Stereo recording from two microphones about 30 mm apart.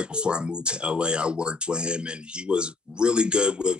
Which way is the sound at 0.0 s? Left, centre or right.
Right.